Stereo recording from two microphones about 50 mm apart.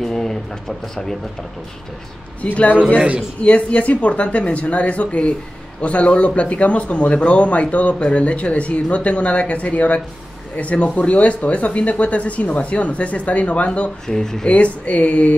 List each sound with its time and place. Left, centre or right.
0.0 s a sound: centre
2.4 s a man's voice: left
14.0 s speech: centre
14.5 s speech: left